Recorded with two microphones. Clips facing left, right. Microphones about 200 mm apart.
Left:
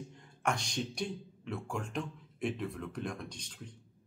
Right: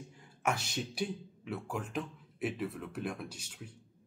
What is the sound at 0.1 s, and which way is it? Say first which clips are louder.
Speech: right 1 dB; 5° right (ahead or behind).